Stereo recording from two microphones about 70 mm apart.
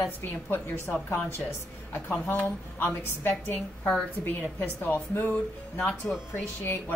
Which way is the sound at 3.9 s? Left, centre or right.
Centre.